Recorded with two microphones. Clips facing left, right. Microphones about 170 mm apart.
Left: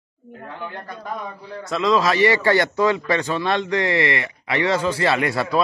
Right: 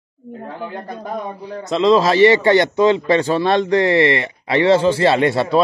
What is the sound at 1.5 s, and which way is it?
A man's voice, 20° right (ahead or behind).